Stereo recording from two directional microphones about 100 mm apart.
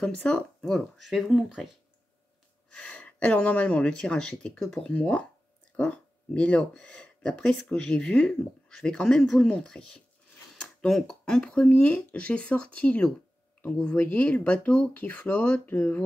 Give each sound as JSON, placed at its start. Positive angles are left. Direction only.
{"t": 0.0, "sound": "speech", "side_deg": 10}
{"t": 2.7, "sound": "speech", "side_deg": 10}
{"t": 13.9, "sound": "speech", "side_deg": 15}